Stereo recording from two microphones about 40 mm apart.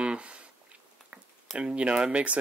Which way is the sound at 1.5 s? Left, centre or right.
Right.